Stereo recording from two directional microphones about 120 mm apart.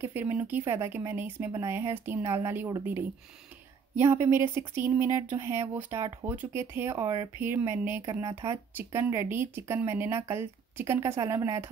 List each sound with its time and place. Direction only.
0.0 s speech: 15° right (ahead or behind)
3.9 s speech: 20° right (ahead or behind)